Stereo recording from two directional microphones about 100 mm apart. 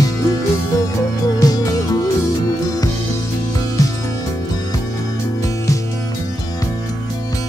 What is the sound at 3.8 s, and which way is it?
Music, 35° left (ahead or behind).